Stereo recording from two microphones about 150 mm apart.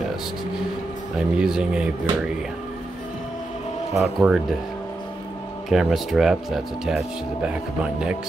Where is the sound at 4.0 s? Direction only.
5° right (ahead or behind).